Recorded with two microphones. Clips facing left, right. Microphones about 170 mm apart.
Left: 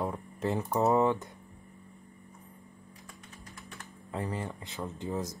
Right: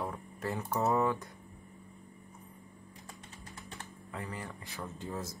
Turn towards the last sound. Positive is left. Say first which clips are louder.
# left 5 dB
turn(degrees=20)  # may be behind; listen again after turning